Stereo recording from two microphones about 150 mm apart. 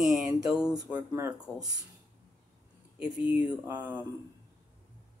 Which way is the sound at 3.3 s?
10° right (ahead or behind).